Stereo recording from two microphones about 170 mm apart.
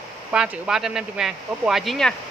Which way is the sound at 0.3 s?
5° right (ahead or behind).